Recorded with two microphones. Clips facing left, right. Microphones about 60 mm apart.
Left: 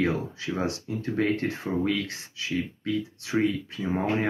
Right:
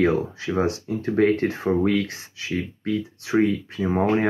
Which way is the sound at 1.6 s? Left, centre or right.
Right.